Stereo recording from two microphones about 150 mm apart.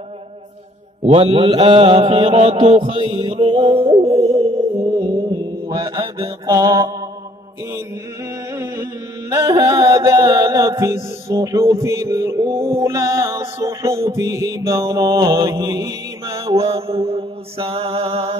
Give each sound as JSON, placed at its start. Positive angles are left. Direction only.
{"t": 1.0, "sound": "mantra", "side_deg": -40}
{"t": 8.5, "sound": "music", "side_deg": -20}
{"t": 16.4, "sound": "mantra", "side_deg": -40}